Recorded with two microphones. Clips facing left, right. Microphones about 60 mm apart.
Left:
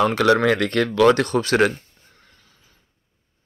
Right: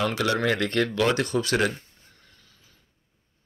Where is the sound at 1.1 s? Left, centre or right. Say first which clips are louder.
Left 6 dB; left.